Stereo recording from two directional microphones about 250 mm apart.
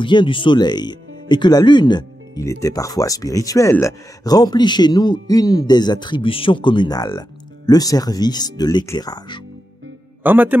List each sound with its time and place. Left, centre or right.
0.0 s speech: centre
10.2 s a man's voice: centre